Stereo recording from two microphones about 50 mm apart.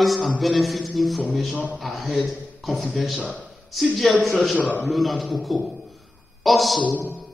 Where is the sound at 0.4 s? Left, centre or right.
Centre.